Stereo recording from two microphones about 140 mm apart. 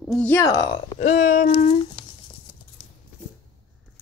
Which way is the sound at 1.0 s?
65° left (ahead or behind).